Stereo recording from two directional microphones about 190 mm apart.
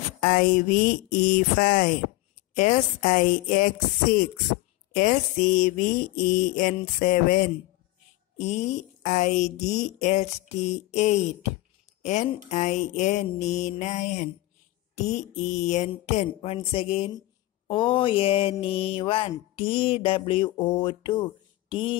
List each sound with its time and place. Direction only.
0.2 s mantra: 45° left (ahead or behind)
8.4 s speech: 35° left (ahead or behind)
17.6 s mantra: 25° left (ahead or behind)